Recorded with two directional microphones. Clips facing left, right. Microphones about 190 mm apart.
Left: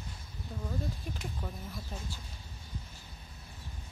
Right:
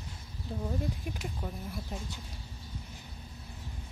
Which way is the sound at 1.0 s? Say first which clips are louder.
Right 2 dB; 10° right (ahead or behind).